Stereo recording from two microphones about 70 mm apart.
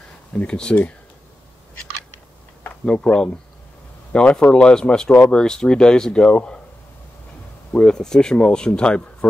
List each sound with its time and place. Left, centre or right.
0.3 s speech: left
2.8 s speech: centre
7.7 s speech: centre